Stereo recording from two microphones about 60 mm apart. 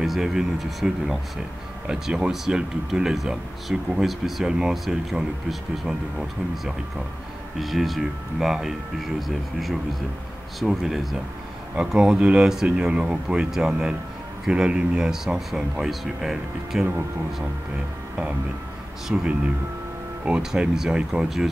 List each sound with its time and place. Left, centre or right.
0.0 s speech: centre
11.7 s speech: centre
19.1 s speech: centre